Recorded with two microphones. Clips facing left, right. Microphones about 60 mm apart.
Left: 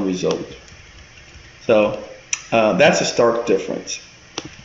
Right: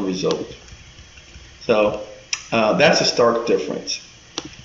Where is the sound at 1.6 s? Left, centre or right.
Centre.